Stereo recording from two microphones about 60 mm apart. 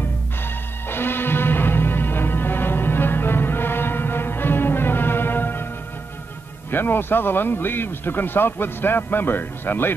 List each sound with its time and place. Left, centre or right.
0.8 s music: left
6.7 s a man's voice: left